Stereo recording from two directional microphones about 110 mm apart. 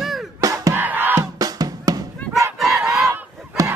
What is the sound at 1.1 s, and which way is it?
Music, 35° right (ahead or behind).